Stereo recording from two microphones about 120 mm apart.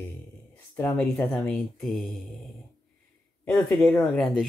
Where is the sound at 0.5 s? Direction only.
15° left (ahead or behind).